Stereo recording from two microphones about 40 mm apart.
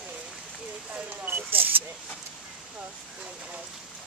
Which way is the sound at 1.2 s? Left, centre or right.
Right.